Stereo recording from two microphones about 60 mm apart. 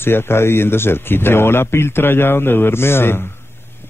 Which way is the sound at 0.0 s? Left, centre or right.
Left.